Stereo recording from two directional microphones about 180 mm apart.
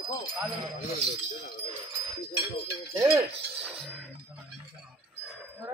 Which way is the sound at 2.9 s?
10° right (ahead or behind).